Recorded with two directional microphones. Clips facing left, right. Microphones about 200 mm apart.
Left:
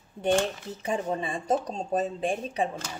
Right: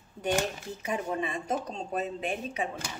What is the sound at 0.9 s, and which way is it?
A woman's voice, 30° left (ahead or behind).